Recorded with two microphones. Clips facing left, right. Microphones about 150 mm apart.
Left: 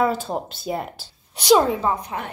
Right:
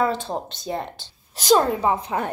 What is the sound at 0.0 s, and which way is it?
A woman's voice, 5° left (ahead or behind).